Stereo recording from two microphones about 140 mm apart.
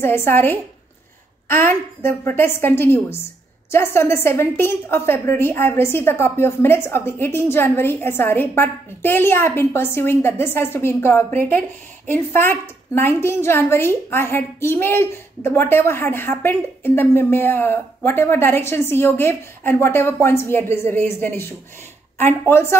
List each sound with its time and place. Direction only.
0.0 s a woman's voice: 15° left (ahead or behind)